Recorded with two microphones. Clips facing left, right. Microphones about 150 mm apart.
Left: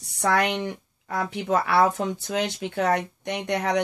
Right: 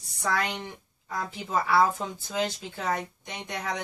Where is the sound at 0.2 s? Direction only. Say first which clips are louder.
Left 6 dB; 70° left (ahead or behind).